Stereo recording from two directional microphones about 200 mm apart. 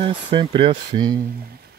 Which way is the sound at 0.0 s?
25° right (ahead or behind).